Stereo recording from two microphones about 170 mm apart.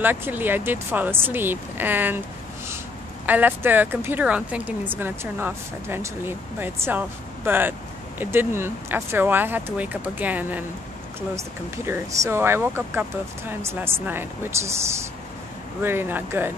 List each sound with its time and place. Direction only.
0.0 s speech: 10° right (ahead or behind)
3.3 s speech: 10° right (ahead or behind)